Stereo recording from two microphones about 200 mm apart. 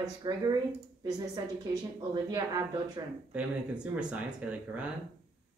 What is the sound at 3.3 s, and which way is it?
Speech, 5° right (ahead or behind).